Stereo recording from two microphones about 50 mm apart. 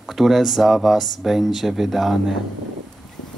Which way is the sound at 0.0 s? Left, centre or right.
Centre.